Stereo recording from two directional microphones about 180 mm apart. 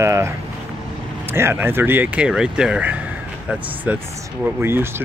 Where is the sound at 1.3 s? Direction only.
15° right (ahead or behind).